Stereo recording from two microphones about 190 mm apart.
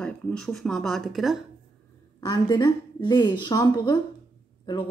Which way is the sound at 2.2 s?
20° left (ahead or behind).